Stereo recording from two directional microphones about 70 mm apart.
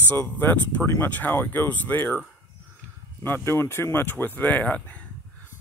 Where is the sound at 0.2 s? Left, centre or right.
Left.